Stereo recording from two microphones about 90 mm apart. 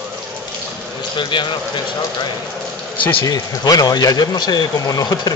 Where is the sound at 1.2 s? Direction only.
60° left (ahead or behind).